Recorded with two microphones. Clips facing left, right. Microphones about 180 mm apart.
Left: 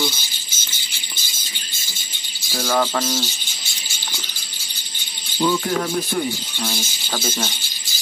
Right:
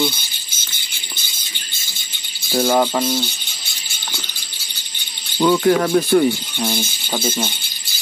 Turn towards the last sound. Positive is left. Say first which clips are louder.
# right 3 dB
turn(degrees=-15)  # may be behind; listen again after turning